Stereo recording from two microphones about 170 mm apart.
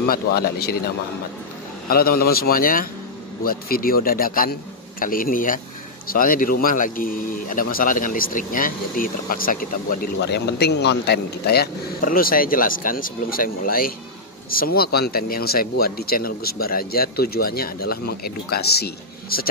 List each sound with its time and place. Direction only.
0.1 s speech: 65° left (ahead or behind)
1.9 s speech: 60° left (ahead or behind)